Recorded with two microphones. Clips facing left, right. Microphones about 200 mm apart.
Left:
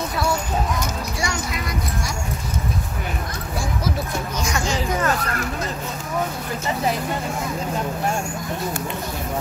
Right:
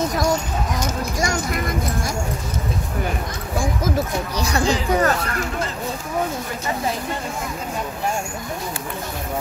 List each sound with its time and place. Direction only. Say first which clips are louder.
0.1 s a sound: right 3 dB; 40° right (ahead or behind)
1.2 s speech: right 5 dB; 50° right (ahead or behind)
4.4 s speech: right 4 dB; 35° right (ahead or behind)